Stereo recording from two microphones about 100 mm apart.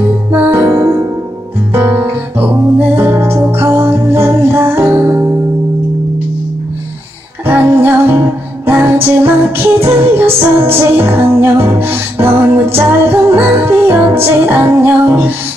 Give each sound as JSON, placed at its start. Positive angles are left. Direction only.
{"t": 0.3, "sound": "music", "side_deg": -20}
{"t": 7.4, "sound": "music", "side_deg": -20}